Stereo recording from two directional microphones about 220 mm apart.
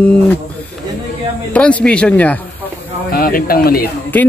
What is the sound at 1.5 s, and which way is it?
Speech, 5° left (ahead or behind).